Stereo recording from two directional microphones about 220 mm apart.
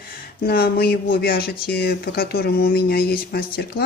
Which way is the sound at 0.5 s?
45° left (ahead or behind).